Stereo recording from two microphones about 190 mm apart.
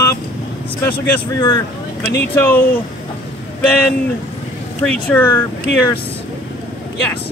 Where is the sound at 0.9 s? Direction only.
25° left (ahead or behind).